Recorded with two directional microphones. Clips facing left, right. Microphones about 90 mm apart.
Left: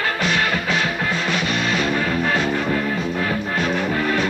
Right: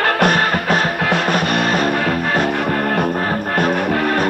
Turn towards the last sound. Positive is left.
turn(degrees=-60)  # may be behind; listen again after turning